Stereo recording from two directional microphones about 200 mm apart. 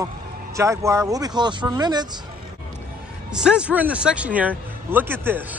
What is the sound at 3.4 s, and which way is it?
A man's voice, 5° right (ahead or behind).